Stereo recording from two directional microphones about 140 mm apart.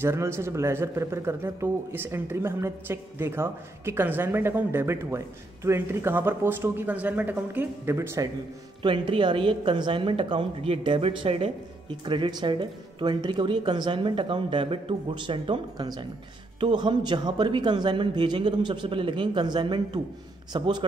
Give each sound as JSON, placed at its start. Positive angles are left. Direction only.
{"t": 0.0, "sound": "speech", "side_deg": -20}
{"t": 8.8, "sound": "speech", "side_deg": -35}